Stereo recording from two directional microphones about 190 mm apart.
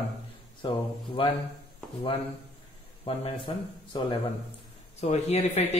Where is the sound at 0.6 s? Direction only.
25° left (ahead or behind).